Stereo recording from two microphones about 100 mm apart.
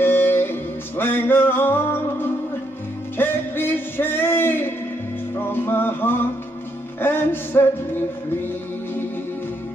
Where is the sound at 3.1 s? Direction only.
20° left (ahead or behind).